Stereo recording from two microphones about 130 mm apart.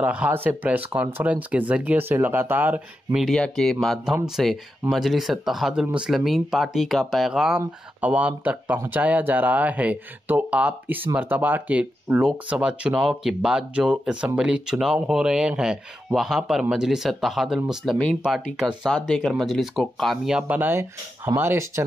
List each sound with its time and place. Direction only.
0.0 s speech: 10° right (ahead or behind)
3.3 s speech: 5° left (ahead or behind)
18.9 s speech: 5° left (ahead or behind); by 21.8 s 20° right (ahead or behind)